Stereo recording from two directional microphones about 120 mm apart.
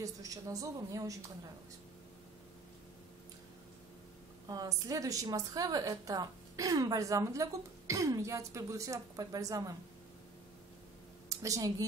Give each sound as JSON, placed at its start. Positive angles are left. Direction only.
{"t": 0.0, "sound": "a woman's voice", "side_deg": -30}
{"t": 4.5, "sound": "a woman's voice", "side_deg": -30}
{"t": 11.2, "sound": "a sound", "side_deg": -25}